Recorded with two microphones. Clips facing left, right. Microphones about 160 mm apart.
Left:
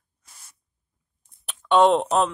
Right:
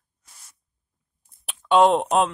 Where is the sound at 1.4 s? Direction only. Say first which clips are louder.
Even; 5° right (ahead or behind).